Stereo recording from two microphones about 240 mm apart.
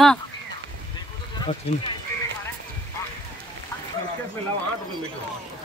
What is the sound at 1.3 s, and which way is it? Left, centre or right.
Speech, left.